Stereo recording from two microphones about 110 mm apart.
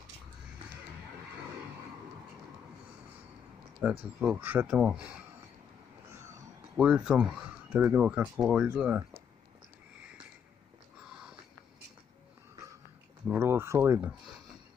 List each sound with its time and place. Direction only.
3.8 s speech: 15° right (ahead or behind)
6.8 s speech: 10° right (ahead or behind)
13.3 s speech: 20° right (ahead or behind)